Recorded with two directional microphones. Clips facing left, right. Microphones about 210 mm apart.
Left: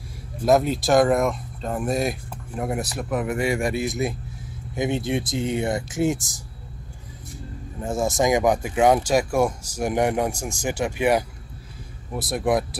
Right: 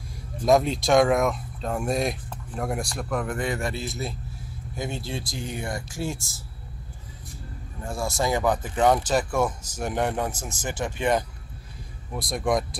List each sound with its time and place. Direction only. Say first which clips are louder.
0.5 s speech: left 1 dB; centre (ahead or behind)
7.8 s speech: left 5 dB; 20° left (ahead or behind)